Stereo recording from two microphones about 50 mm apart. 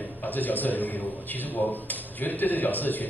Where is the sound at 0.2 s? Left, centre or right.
Left.